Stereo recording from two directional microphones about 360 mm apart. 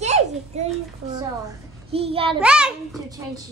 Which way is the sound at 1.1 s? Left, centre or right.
Centre.